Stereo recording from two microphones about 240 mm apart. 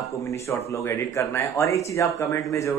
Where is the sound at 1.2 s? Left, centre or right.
Centre.